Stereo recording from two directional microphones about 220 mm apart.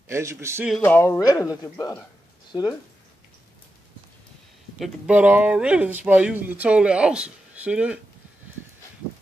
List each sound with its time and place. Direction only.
0.1 s a man's voice: 10° right (ahead or behind)
0.8 s speech: 10° left (ahead or behind)
4.7 s speech: centre (ahead or behind)